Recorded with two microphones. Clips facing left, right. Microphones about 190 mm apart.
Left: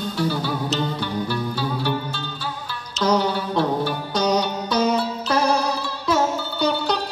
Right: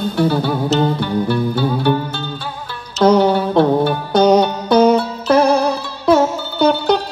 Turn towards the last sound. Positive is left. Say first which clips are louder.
# right 8 dB
turn(degrees=-55)  # may be behind; listen again after turning